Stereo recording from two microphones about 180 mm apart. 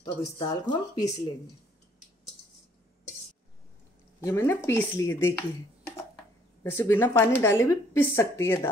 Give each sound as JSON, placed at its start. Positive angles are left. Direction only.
{"t": 0.0, "sound": "a woman's voice", "side_deg": 25}
{"t": 4.2, "sound": "speech", "side_deg": 15}
{"t": 6.6, "sound": "speech", "side_deg": 10}